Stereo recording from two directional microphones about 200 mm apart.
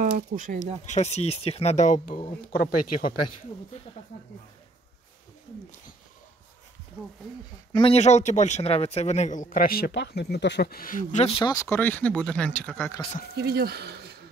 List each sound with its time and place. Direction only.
0.0 s speech: 40° right (ahead or behind)
0.8 s speech: 35° left (ahead or behind)
2.4 s speech: 45° left (ahead or behind)
7.7 s speech: 30° left (ahead or behind)
11.5 s speech: 10° left (ahead or behind)
13.4 s speech: 55° right (ahead or behind)